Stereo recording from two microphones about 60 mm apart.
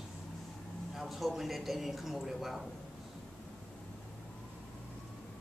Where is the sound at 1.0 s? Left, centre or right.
Centre.